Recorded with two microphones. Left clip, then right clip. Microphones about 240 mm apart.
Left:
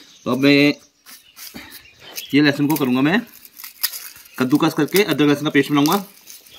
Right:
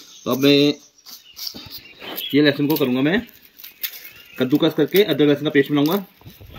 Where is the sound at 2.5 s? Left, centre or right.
Left.